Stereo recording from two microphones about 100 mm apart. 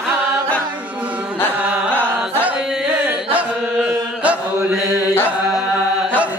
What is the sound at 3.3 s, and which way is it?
Chant, 15° right (ahead or behind).